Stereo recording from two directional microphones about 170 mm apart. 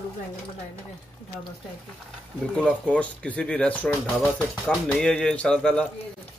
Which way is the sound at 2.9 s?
5° left (ahead or behind).